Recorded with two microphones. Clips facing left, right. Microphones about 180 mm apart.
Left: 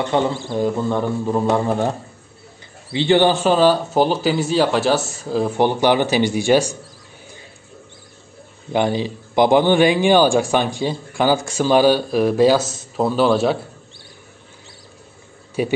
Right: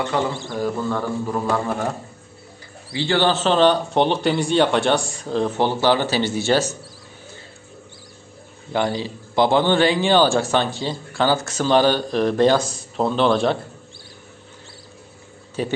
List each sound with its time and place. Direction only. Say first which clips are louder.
0.1 s a man's voice: left 4 dB; 25° left (ahead or behind)
2.9 s a man's voice: left 5 dB; 20° left (ahead or behind)
8.7 s a man's voice: left 3 dB; 15° left (ahead or behind)
15.6 s a man's voice: left 4 dB; 10° left (ahead or behind)